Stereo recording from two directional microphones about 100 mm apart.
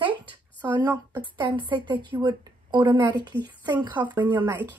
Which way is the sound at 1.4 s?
55° right (ahead or behind).